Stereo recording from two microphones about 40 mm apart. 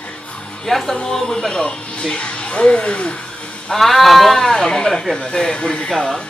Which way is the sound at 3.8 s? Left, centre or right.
Centre.